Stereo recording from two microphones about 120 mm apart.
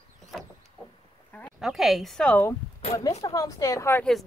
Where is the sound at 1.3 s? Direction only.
10° left (ahead or behind).